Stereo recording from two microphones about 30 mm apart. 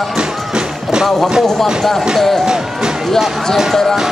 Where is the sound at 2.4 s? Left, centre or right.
Right.